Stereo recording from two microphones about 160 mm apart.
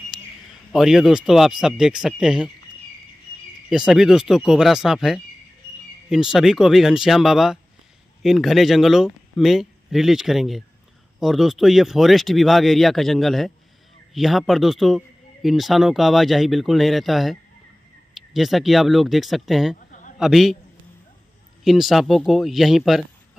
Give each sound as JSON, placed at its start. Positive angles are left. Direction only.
{"t": 0.1, "sound": "a sound", "side_deg": -5}
{"t": 0.7, "sound": "a man's voice", "side_deg": 0}
{"t": 3.7, "sound": "a man's voice", "side_deg": -5}
{"t": 19.9, "sound": "a sound", "side_deg": 50}
{"t": 20.2, "sound": "a man's voice", "side_deg": 0}
{"t": 21.6, "sound": "a man's voice", "side_deg": 0}